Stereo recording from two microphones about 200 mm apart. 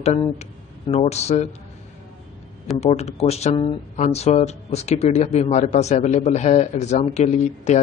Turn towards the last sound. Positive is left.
turn(degrees=35)  # may be behind; listen again after turning